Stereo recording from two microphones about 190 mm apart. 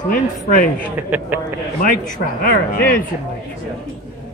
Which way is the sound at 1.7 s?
45° left (ahead or behind).